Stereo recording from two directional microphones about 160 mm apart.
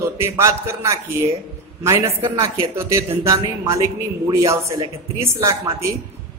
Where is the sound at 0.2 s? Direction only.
15° right (ahead or behind).